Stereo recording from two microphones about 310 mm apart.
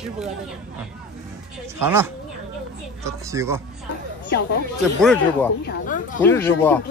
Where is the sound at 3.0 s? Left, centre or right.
Centre.